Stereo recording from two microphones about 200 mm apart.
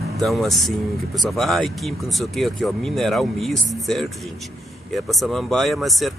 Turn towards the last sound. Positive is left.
turn(degrees=0)  # may be behind; listen again after turning